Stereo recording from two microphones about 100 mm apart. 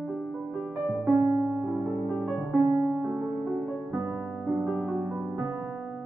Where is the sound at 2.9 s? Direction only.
15° right (ahead or behind).